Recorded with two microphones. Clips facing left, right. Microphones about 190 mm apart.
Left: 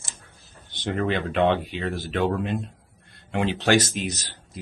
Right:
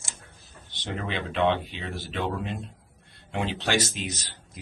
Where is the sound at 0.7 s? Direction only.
50° left (ahead or behind).